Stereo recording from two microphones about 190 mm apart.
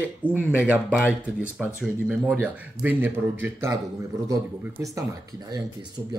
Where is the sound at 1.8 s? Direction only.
5° right (ahead or behind).